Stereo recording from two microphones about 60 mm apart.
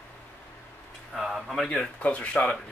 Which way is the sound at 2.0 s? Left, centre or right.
Left.